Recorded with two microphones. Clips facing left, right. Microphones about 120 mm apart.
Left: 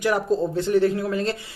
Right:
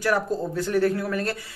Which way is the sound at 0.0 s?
20° left (ahead or behind).